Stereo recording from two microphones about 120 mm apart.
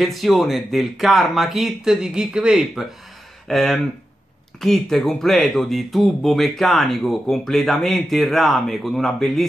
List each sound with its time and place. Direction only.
0.0 s speech: centre (ahead or behind)